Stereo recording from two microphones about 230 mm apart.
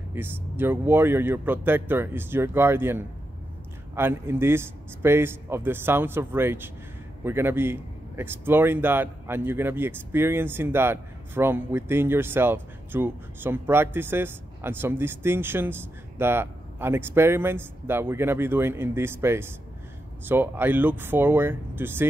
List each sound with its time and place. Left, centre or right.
0.1 s a man's voice: centre